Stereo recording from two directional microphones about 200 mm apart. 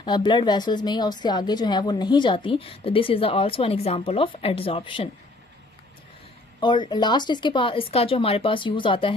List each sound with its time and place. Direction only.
0.0 s a woman's voice: 25° left (ahead or behind)
6.6 s a woman's voice: 25° left (ahead or behind)